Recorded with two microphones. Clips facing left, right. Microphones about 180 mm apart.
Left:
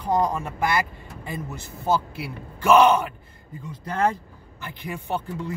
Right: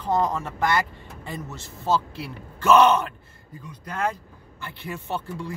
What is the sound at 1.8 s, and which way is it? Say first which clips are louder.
Speech: left 1 dB; 10° left (ahead or behind).